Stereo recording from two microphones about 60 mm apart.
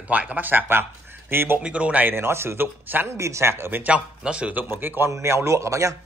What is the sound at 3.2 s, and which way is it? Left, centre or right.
Speech, right.